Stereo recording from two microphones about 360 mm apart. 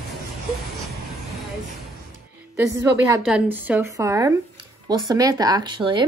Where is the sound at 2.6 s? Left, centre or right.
Centre.